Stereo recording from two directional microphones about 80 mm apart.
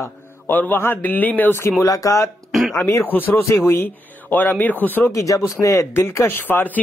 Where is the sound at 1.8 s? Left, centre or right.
Left.